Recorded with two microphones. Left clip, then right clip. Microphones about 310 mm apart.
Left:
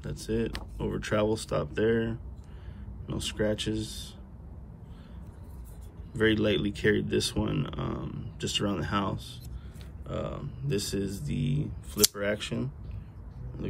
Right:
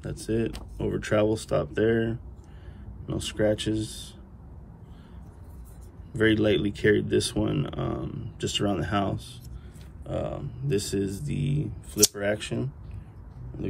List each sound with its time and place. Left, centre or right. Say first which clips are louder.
0.0 s speech: right 3 dB; centre
6.1 s speech: right 3 dB; centre